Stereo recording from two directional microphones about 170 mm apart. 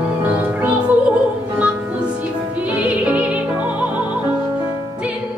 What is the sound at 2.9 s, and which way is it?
Music, 5° right (ahead or behind).